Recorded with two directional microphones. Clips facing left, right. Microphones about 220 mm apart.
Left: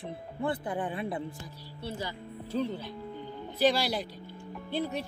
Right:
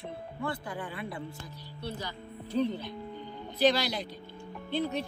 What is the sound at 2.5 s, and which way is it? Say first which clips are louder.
Speech: right 2 dB; 10° left (ahead or behind).